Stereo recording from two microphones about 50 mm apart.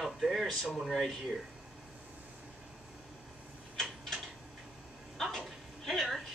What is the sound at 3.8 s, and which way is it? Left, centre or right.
Mechanisms, centre.